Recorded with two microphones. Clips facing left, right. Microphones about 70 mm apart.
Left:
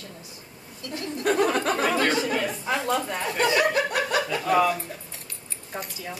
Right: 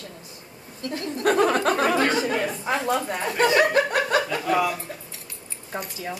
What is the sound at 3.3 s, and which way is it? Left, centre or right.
Chuckle, right.